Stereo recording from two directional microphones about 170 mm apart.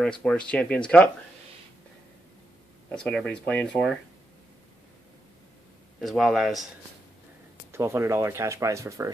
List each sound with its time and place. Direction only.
0.2 s speech: 5° left (ahead or behind)
2.9 s speech: 5° left (ahead or behind)
5.9 s speech: centre (ahead or behind)
7.7 s speech: 15° right (ahead or behind)